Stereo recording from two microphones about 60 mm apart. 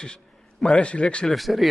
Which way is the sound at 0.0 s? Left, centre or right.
Centre.